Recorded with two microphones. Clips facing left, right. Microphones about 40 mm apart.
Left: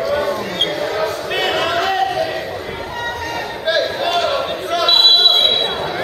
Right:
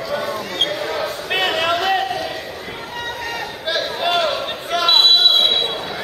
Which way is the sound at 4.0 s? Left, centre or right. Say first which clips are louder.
Left 1 dB; centre.